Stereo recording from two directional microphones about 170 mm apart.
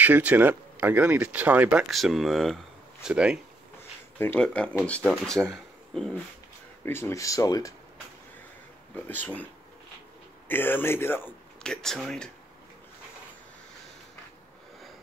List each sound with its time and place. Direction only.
0.0 s speech: 10° right (ahead or behind)
4.2 s speech: 10° left (ahead or behind)
6.8 s speech: 15° left (ahead or behind)
8.9 s speech: 10° left (ahead or behind)
10.5 s speech: 10° left (ahead or behind)